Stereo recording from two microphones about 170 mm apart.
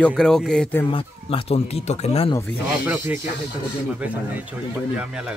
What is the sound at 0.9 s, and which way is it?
Speech, 30° left (ahead or behind).